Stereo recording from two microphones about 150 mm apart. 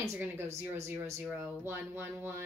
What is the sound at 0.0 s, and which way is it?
Speech, 20° right (ahead or behind).